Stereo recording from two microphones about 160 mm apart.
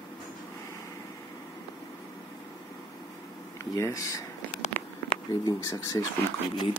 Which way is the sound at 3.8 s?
20° left (ahead or behind).